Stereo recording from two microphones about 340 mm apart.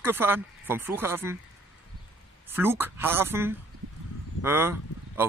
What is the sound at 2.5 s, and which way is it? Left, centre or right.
Speech, centre.